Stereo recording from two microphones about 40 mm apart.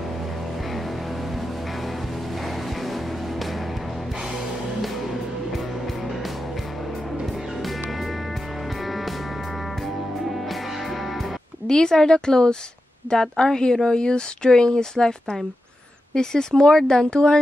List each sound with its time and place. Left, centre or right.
2.4 s music: centre
4.8 s music: centre
8.8 s music: centre
11.6 s speech: centre